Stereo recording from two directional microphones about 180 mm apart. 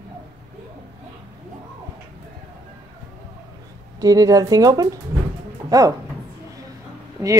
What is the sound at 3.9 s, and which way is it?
Speech, 20° right (ahead or behind).